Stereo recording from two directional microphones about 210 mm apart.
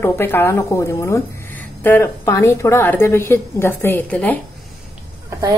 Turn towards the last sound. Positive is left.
turn(degrees=-15)  # may be behind; listen again after turning